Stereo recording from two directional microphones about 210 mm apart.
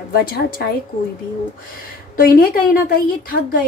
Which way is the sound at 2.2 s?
45° left (ahead or behind).